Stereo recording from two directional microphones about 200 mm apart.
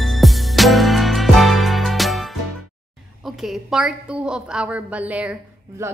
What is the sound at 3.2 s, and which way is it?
A woman's voice, centre (ahead or behind).